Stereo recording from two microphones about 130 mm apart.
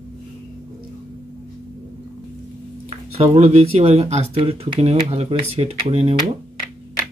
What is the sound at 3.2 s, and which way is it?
Speech, 55° right (ahead or behind).